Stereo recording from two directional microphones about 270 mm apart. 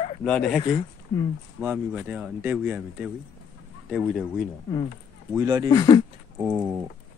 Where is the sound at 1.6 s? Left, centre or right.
Centre.